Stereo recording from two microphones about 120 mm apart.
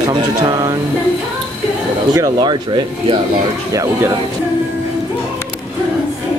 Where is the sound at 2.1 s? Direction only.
35° right (ahead or behind).